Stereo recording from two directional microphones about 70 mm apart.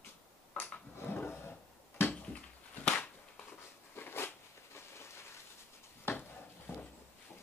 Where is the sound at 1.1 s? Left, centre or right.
Left.